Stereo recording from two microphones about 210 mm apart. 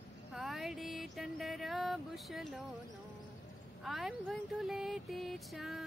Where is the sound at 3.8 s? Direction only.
Centre (ahead or behind).